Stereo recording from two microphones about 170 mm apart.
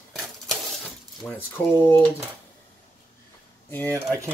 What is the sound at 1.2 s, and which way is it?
Speech, 10° left (ahead or behind).